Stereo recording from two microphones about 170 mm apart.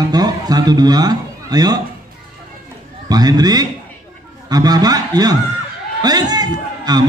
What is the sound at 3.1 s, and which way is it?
A man's voice, 20° right (ahead or behind).